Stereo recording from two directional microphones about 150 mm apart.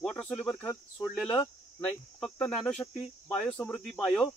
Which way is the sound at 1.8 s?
5° left (ahead or behind).